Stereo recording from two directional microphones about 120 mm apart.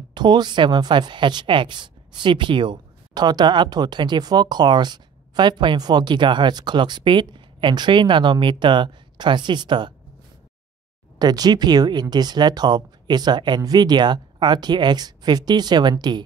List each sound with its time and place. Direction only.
0.1 s speech: 40° right (ahead or behind)
11.1 s speech: 35° right (ahead or behind)